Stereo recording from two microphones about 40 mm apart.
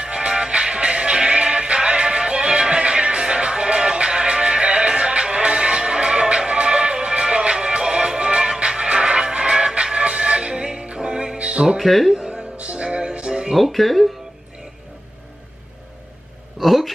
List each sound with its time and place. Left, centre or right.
0.0 s music: right
11.8 s speech: centre
12.5 s music: right
13.6 s speech: centre
16.5 s a sound: centre